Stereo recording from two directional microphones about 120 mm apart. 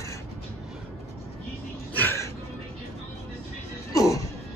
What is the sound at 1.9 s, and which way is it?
Music, 20° left (ahead or behind).